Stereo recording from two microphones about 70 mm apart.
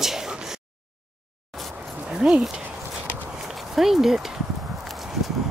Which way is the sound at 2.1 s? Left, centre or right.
Centre.